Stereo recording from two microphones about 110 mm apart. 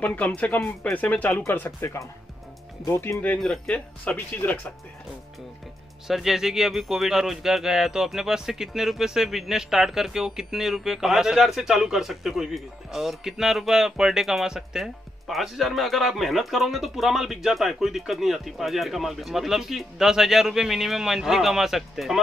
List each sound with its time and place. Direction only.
0.0 s speech: 15° left (ahead or behind)
6.0 s speech: 5° right (ahead or behind)